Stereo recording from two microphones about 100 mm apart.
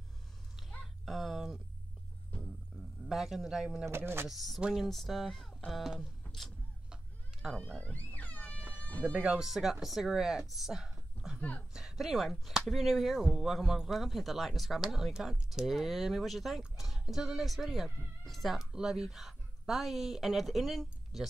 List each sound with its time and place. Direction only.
1.0 s a sound: centre (ahead or behind)
2.7 s a sound: 5° left (ahead or behind)
3.1 s speech: 5° right (ahead or behind)
3.9 s speech: 25° right (ahead or behind)
4.3 s speech: centre (ahead or behind)
5.7 s music: centre (ahead or behind)
7.8 s music: 15° left (ahead or behind)
9.0 s speech: 10° right (ahead or behind)